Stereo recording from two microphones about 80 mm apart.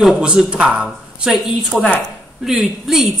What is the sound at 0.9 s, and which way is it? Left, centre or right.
A woman's voice, centre.